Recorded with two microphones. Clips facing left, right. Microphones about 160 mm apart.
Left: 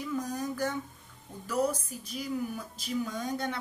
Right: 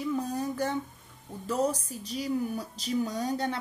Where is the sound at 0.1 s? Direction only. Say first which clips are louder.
Even; 30° right (ahead or behind).